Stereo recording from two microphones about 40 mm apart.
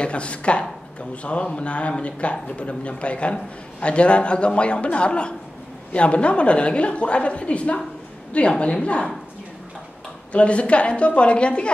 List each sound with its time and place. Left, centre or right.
0.0 s a man's voice: left
10.3 s a man's voice: left